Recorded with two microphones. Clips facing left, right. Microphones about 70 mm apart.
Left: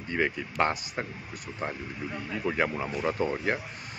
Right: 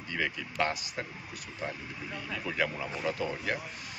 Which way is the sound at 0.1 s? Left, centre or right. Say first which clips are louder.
Left 5 dB; left.